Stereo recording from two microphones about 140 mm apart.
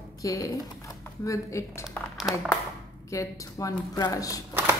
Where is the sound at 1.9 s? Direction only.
Centre (ahead or behind).